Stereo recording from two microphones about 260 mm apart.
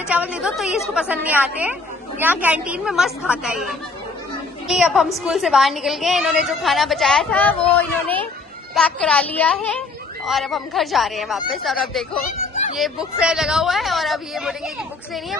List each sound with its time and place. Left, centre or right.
0.1 s a woman's voice: centre
12.4 s a sound: left
12.7 s a woman's voice: centre